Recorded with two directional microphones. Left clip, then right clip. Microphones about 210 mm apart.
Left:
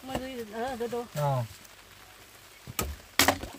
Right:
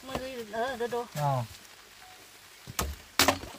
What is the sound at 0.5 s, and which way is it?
Speech, 15° right (ahead or behind).